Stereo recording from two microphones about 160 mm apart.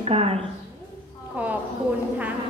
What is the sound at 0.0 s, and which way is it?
Speech, 40° right (ahead or behind).